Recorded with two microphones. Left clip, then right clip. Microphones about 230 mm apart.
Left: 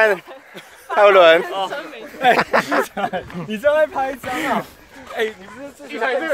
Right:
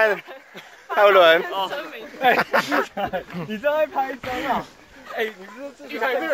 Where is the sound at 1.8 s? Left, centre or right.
Left.